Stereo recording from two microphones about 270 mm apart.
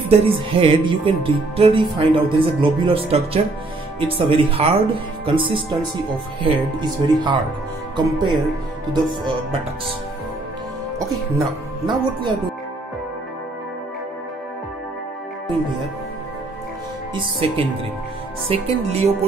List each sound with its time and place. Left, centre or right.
0.2 s speech: centre
11.0 s speech: centre
17.4 s speech: right